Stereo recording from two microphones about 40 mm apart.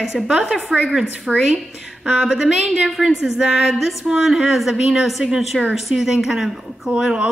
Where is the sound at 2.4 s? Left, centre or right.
Centre.